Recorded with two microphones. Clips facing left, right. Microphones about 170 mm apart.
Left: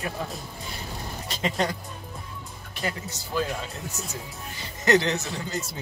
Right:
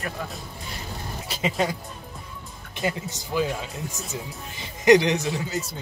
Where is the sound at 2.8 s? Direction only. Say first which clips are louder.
Right 4 dB; 20° right (ahead or behind).